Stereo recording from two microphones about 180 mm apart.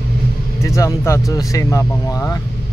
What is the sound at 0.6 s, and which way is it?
Speech, 15° left (ahead or behind).